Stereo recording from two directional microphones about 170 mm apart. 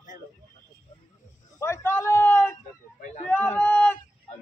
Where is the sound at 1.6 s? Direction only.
15° left (ahead or behind).